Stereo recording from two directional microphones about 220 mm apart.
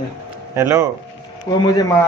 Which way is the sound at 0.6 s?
10° right (ahead or behind).